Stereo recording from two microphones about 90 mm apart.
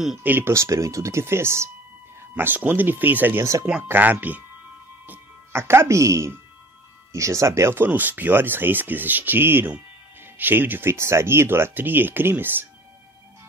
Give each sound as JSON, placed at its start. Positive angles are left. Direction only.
{"t": 0.2, "sound": "speech", "side_deg": -20}